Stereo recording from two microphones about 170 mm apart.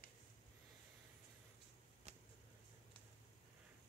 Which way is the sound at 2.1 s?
40° right (ahead or behind).